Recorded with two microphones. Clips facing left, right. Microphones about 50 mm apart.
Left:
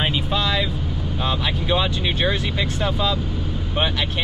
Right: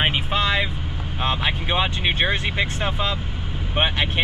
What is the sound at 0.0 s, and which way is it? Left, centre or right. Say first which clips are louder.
Vehicle: right 1 dB; right.